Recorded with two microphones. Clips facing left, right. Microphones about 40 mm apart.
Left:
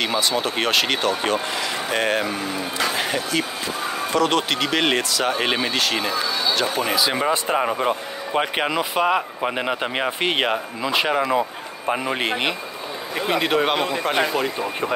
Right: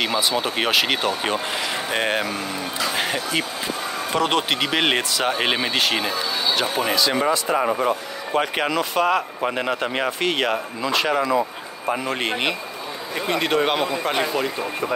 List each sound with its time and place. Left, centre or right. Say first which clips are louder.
0.0 s speech: even; centre
5.3 s speech: even; centre
5.8 s speech: even; centre
6.9 s speech: right 2 dB; centre
7.8 s a man's voice: even; left
8.4 s a man's voice: even; centre
12.2 s a man's voice: even; centre